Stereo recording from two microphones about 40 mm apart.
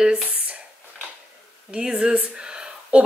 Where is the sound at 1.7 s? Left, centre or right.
Centre.